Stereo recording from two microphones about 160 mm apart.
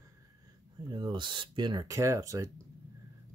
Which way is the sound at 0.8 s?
25° right (ahead or behind).